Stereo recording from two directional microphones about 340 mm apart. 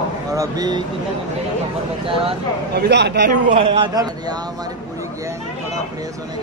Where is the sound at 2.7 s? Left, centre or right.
Right.